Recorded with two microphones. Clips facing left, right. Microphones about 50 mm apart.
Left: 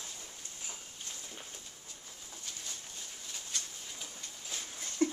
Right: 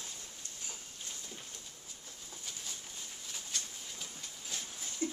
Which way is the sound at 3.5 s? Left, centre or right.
Centre.